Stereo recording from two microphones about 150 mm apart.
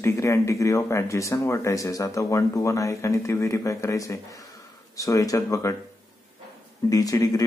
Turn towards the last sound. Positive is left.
turn(degrees=25)  # may be behind; listen again after turning